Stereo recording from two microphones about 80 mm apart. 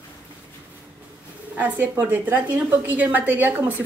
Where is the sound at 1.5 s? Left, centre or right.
Right.